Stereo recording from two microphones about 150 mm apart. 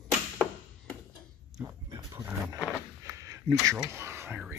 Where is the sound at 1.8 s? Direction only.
25° right (ahead or behind).